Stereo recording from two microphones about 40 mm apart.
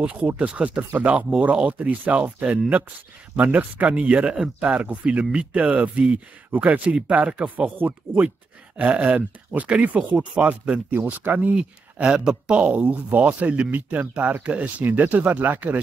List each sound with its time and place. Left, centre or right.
0.0 s speech: right
8.1 s speech: right
8.7 s speech: right
11.5 s speech: right
14.8 s speech: right